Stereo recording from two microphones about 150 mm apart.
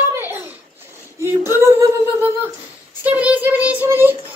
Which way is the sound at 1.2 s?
15° right (ahead or behind).